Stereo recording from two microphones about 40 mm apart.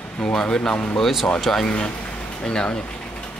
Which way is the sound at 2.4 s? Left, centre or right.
Left.